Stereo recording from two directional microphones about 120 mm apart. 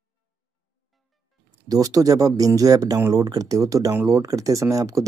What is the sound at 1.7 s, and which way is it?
Speech, 30° right (ahead or behind).